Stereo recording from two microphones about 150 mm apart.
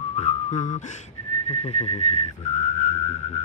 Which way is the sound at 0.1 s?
45° left (ahead or behind).